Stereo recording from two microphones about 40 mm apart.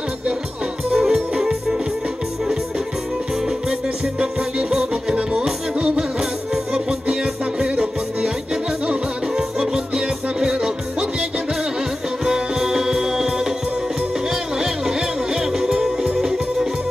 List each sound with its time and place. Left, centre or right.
0.9 s music: centre
4.2 s music: right
9.6 s music: centre
12.3 s music: centre
14.6 s music: centre